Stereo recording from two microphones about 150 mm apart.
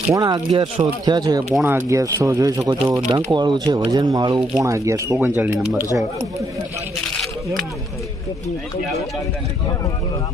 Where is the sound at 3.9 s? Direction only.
25° right (ahead or behind).